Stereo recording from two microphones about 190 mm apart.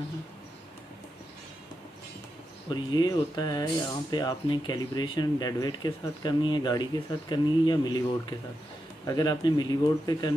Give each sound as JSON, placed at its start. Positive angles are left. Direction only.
{"t": 2.7, "sound": "speech", "side_deg": 20}